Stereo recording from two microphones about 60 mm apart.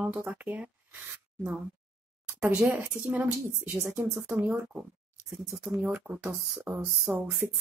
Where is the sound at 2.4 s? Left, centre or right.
Right.